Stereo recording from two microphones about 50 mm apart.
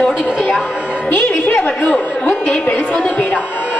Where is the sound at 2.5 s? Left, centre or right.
Left.